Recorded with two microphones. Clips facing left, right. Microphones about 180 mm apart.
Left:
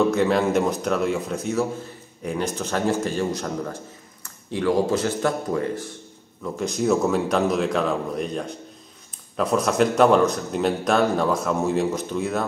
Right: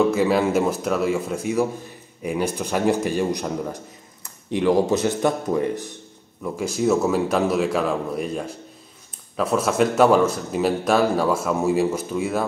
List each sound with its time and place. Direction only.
0.1 s speech: 5° right (ahead or behind)
6.4 s a man's voice: 5° right (ahead or behind)